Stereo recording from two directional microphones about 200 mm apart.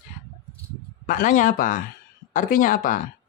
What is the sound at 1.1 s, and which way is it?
Speech, 40° left (ahead or behind).